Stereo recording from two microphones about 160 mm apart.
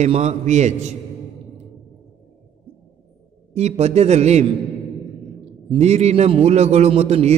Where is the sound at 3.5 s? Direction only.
45° right (ahead or behind).